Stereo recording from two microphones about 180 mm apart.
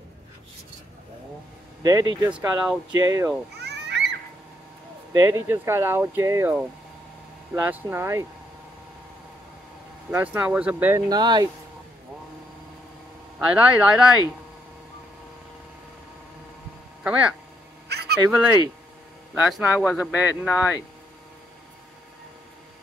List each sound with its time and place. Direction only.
1.8 s speech: 20° right (ahead or behind)
3.6 s a sound: 70° right (ahead or behind)
5.1 s speech: 15° right (ahead or behind)
7.5 s speech: 10° right (ahead or behind)
10.1 s speech: 10° right (ahead or behind)
13.4 s speech: 5° right (ahead or behind)
17.0 s speech: 5° right (ahead or behind)
17.8 s a sound: 65° right (ahead or behind)
19.3 s speech: 10° right (ahead or behind)